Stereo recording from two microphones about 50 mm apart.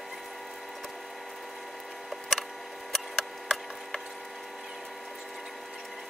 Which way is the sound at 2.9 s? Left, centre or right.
Centre.